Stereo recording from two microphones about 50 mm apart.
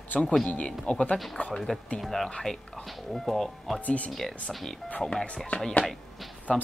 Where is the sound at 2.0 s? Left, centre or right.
Centre.